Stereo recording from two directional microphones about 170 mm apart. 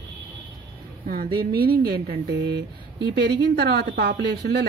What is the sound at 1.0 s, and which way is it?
A woman's voice, 60° right (ahead or behind).